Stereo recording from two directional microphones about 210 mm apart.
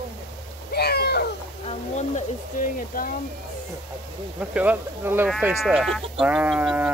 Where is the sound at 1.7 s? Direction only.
35° left (ahead or behind).